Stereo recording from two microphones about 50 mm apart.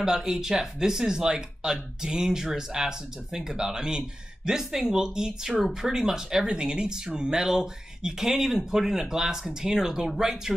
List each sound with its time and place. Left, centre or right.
0.0 s speech: centre